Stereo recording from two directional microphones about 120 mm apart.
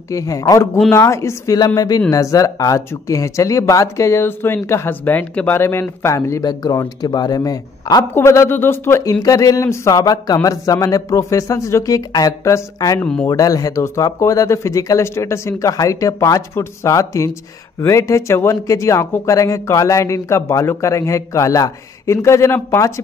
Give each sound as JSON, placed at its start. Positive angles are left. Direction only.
{"t": 0.1, "sound": "speech", "side_deg": 25}
{"t": 13.0, "sound": "speech", "side_deg": 10}
{"t": 13.3, "sound": "speech", "side_deg": 30}